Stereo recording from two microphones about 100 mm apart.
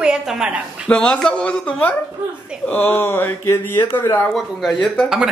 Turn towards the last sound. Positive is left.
turn(degrees=5)  # may be behind; listen again after turning